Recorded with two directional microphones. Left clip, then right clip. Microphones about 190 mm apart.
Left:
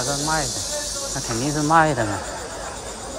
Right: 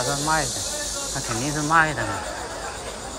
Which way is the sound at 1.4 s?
15° left (ahead or behind).